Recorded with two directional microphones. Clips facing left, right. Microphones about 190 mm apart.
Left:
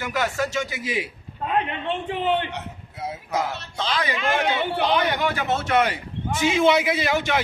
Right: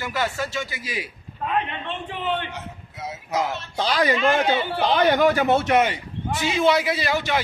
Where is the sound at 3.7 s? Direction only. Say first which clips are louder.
Right 6 dB; 40° right (ahead or behind).